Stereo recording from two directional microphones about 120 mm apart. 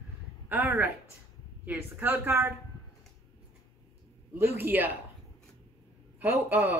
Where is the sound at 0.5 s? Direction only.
15° right (ahead or behind).